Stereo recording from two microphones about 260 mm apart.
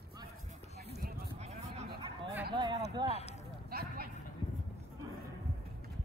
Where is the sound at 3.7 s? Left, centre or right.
Right.